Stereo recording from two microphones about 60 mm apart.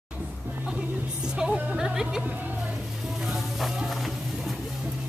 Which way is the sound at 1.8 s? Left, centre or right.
Centre.